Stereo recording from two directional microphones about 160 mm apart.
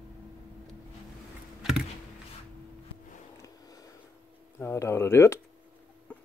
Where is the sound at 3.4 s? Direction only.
20° left (ahead or behind).